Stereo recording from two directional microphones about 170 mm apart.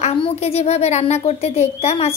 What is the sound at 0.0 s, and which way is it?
Speech, 35° left (ahead or behind).